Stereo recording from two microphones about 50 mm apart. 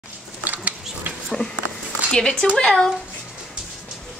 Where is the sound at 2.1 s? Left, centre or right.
Centre.